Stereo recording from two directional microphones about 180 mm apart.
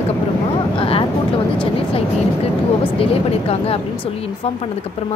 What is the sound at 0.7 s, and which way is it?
Vehicle, 30° left (ahead or behind).